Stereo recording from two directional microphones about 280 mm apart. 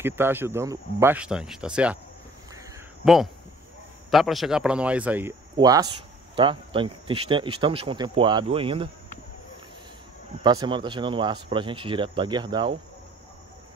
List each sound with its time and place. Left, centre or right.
0.0 s speech: centre
3.0 s speech: centre
10.4 s speech: centre